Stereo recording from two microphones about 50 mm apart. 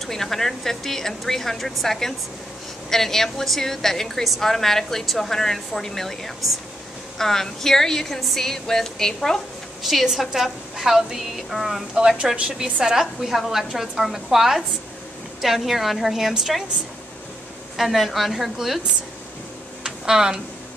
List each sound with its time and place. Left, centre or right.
0.0 s a woman's voice: centre
9.8 s a woman's voice: centre
12.4 s a woman's voice: centre
17.7 s a woman's voice: centre
19.8 s a sound: centre